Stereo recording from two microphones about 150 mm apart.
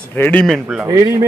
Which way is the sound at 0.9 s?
20° right (ahead or behind).